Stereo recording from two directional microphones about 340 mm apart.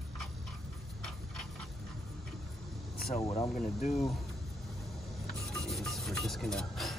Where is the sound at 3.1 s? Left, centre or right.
Centre.